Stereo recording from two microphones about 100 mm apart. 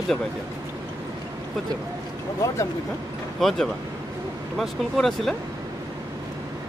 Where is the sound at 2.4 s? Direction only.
30° left (ahead or behind).